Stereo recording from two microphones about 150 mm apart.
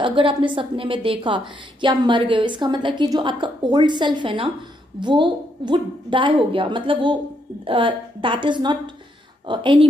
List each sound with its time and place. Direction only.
0.0 s a woman's voice: 35° right (ahead or behind)